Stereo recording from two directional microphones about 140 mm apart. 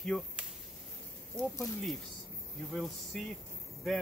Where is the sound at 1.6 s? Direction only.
Centre (ahead or behind).